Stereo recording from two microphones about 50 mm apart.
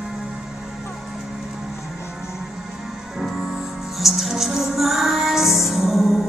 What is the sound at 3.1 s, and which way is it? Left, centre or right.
Music, centre.